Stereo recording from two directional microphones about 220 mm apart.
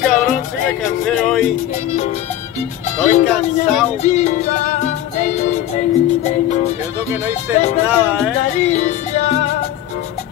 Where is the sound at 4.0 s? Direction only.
30° left (ahead or behind).